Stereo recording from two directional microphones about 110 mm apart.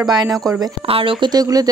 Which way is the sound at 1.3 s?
35° right (ahead or behind).